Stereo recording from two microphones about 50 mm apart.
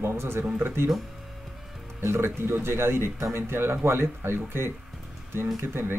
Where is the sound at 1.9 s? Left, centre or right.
Right.